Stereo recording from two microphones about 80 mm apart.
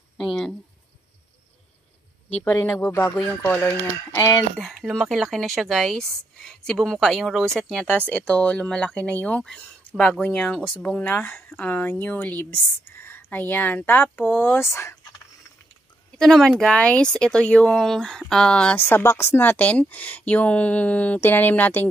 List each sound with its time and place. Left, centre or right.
0.2 s a sound: centre
2.4 s speech: left
4.6 s speech: centre; by 15.0 s left
16.2 s speech: centre
18.8 s speech: left